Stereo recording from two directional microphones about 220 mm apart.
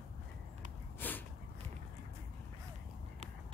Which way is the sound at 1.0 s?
10° left (ahead or behind).